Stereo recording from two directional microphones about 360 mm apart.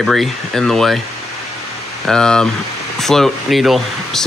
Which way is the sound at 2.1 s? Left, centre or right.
Centre.